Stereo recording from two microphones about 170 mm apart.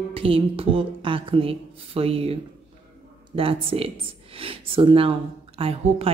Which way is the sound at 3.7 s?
35° right (ahead or behind).